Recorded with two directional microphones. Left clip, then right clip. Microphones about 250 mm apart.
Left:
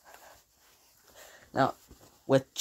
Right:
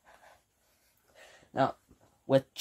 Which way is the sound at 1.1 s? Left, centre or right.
Centre.